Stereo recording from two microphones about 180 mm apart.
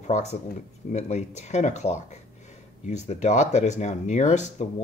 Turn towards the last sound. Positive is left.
turn(degrees=40)  # may be behind; listen again after turning